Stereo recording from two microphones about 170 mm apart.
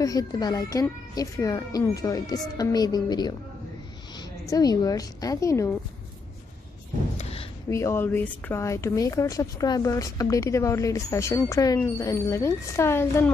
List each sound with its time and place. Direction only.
0.0 s a woman's voice: 20° left (ahead or behind)
7.2 s a sound: 35° left (ahead or behind)
7.7 s a woman's voice: 15° left (ahead or behind)